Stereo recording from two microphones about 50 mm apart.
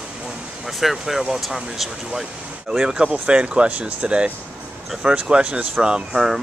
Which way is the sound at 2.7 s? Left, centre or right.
Centre.